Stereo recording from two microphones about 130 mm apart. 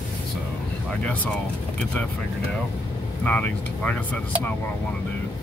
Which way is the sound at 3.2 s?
10° left (ahead or behind).